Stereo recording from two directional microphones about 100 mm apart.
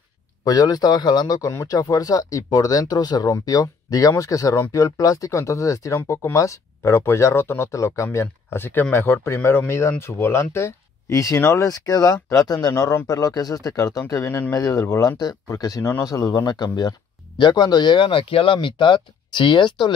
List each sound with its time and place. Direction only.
0.4 s speech: 40° left (ahead or behind)
11.8 s speech: 35° left (ahead or behind); by 19.9 s 50° left (ahead or behind)